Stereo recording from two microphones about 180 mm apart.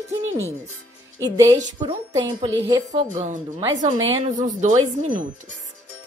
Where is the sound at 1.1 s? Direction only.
20° right (ahead or behind).